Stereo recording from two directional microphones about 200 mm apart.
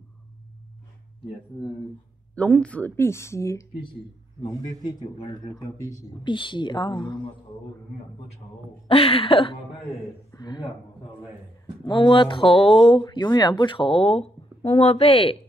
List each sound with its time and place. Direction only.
2.3 s speech: 5° left (ahead or behind); by 7.2 s 20° left (ahead or behind)
8.8 s a sound: 30° left (ahead or behind)
10.3 s speech: 20° left (ahead or behind)
11.8 s speech: 25° left (ahead or behind)